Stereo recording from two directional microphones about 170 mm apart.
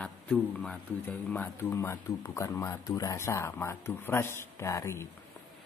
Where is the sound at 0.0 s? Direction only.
5° left (ahead or behind).